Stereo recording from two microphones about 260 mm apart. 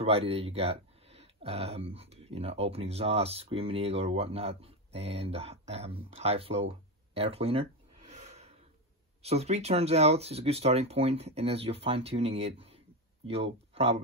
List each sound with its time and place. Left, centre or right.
0.3 s speech: right
7.2 s a sound: right
9.2 s speech: right